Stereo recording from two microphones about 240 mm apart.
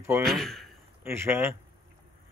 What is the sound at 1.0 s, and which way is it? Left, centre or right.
Speech, centre.